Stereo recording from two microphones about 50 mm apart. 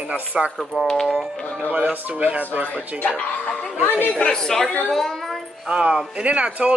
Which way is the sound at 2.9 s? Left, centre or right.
Left.